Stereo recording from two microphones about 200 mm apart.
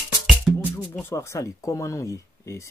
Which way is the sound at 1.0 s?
15° left (ahead or behind).